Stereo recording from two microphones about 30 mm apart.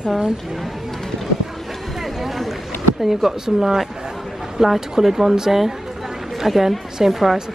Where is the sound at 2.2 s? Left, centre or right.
Centre.